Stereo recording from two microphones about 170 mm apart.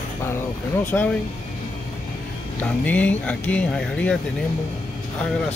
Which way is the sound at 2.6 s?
10° left (ahead or behind).